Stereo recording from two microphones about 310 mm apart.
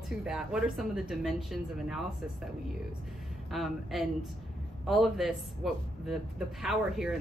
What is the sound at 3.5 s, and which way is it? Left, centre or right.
A woman's voice, centre.